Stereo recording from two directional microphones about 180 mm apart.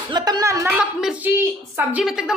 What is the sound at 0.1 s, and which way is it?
Speech, 20° right (ahead or behind).